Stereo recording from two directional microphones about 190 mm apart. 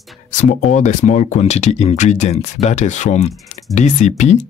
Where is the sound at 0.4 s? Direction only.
40° left (ahead or behind).